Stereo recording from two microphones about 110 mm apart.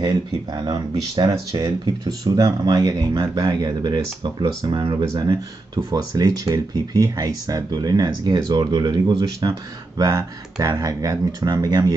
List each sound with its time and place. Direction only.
0.0 s speech: 35° right (ahead or behind)